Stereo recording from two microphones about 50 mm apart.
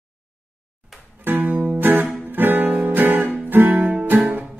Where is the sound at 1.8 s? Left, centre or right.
Right.